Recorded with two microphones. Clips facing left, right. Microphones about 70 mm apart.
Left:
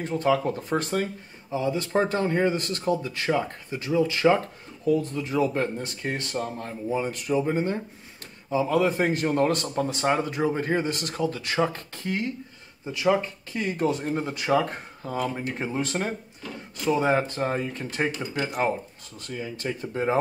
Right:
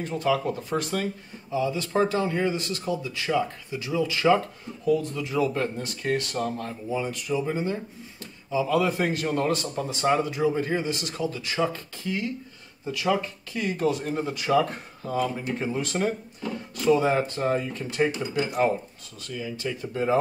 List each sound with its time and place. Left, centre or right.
0.0 s speech: left
9.5 s speech: left
12.8 s speech: left
19.2 s speech: left
19.9 s speech: left